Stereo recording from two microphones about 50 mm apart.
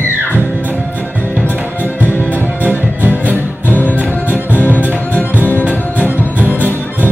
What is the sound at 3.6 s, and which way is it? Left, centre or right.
Music, left.